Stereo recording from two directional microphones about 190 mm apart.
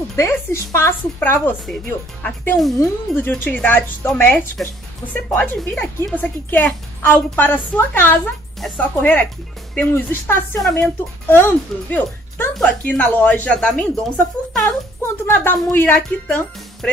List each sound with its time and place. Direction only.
0.1 s speech: 15° left (ahead or behind)